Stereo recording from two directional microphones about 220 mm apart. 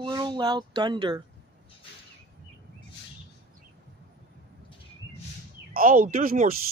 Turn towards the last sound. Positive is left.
turn(degrees=-40)  # may be behind; listen again after turning